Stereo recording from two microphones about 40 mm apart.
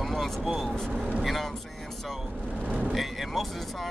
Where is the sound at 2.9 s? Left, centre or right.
Centre.